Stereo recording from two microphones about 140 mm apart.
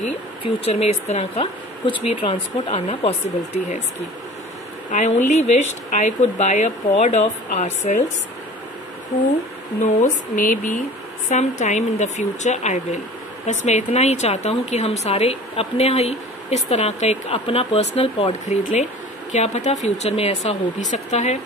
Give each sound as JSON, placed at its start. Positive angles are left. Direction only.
{"t": 0.4, "sound": "speech", "side_deg": 45}
{"t": 4.9, "sound": "speech", "side_deg": 55}
{"t": 10.0, "sound": "speech", "side_deg": 70}